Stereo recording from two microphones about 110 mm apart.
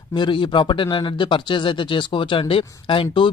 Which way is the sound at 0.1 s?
45° left (ahead or behind).